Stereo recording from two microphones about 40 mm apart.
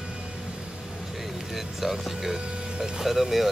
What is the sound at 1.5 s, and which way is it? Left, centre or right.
Speech, centre.